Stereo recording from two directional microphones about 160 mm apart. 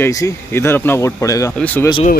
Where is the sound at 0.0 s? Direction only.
15° left (ahead or behind).